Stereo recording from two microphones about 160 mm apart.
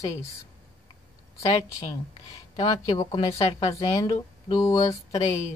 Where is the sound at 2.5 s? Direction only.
30° left (ahead or behind).